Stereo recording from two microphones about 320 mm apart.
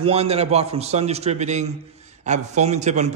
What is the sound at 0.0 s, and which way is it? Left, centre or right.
A man's voice, centre.